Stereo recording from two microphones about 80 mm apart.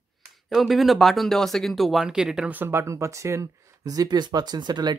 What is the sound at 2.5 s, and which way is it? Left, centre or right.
Speech, right.